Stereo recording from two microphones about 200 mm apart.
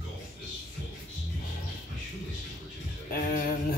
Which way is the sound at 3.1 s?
45° left (ahead or behind).